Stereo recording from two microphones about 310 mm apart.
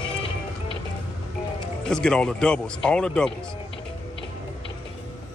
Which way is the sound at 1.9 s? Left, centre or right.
Centre.